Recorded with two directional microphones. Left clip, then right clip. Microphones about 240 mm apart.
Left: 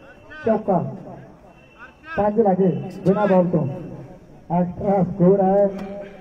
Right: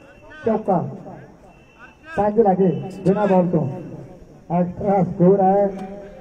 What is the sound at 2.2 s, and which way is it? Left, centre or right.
Speech, right.